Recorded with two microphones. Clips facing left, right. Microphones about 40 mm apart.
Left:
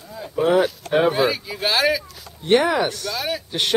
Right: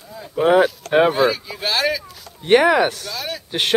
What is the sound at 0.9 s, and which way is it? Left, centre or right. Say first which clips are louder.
Speech: right 2 dB; centre.